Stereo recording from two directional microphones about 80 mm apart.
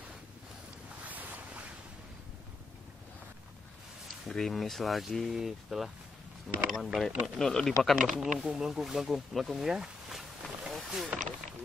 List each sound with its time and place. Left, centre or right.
1.0 s boat: right
4.3 s speech: centre
8.2 s speech: centre